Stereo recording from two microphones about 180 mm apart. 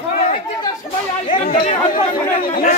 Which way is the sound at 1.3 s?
45° left (ahead or behind).